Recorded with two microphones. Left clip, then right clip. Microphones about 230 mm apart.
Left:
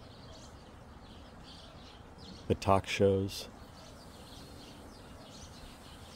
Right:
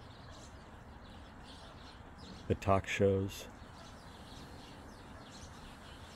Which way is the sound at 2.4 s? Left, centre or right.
Centre.